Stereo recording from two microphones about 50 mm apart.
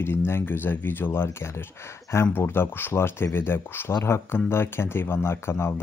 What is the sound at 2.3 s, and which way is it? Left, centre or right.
Speech, left.